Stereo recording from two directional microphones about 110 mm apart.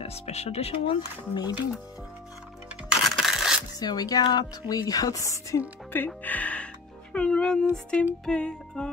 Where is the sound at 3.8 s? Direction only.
35° left (ahead or behind).